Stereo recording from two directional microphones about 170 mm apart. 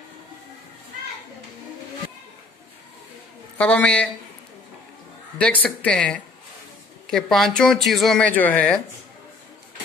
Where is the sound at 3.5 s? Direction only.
5° left (ahead or behind).